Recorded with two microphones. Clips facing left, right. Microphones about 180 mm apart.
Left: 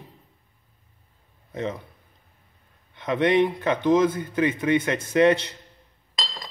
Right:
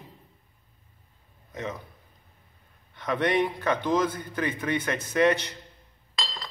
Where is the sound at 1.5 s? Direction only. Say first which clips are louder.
Left 5 dB; 30° left (ahead or behind).